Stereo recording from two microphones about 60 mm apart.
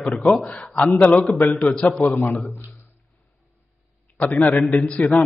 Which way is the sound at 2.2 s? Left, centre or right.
Left.